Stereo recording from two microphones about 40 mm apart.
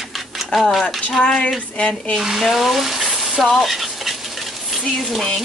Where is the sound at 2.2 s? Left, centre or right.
Centre.